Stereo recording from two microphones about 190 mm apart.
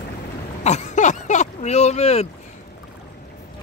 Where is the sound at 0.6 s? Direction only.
35° left (ahead or behind).